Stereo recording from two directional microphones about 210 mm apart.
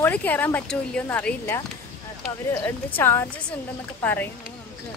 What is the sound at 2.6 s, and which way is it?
Speech, 10° left (ahead or behind).